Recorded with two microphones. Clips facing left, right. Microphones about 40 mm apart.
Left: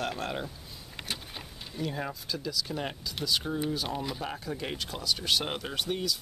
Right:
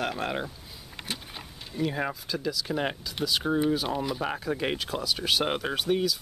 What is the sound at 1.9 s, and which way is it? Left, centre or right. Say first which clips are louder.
Speech: right 4 dB; right.